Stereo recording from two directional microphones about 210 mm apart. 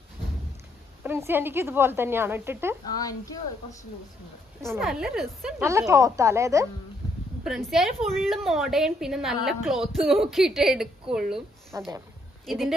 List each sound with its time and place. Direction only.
1.0 s speech: 10° right (ahead or behind)
4.7 s a woman's voice: centre (ahead or behind)
5.6 s speech: 15° right (ahead or behind)
7.4 s a woman's voice: centre (ahead or behind)
11.7 s speech: 15° right (ahead or behind)
12.4 s a woman's voice: centre (ahead or behind)